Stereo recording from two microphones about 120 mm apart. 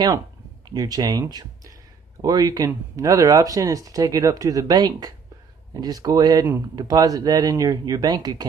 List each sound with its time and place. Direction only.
0.7 s speech: 30° right (ahead or behind)
2.2 s speech: 30° right (ahead or behind)